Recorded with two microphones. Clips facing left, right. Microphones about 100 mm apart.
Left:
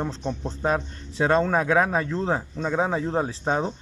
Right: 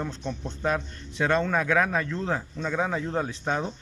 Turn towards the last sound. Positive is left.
turn(degrees=30)  # may be behind; listen again after turning